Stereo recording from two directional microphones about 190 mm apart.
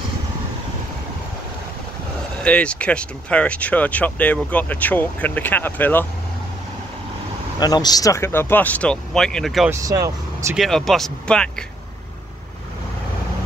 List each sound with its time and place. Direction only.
2.4 s speech: 5° left (ahead or behind)
7.5 s speech: 20° left (ahead or behind); by 9.7 s centre (ahead or behind)
9.7 s speech: 15° right (ahead or behind)
10.5 s speech: centre (ahead or behind)